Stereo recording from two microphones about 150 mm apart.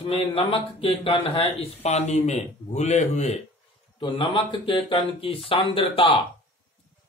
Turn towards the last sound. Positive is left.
turn(degrees=35)  # may be behind; listen again after turning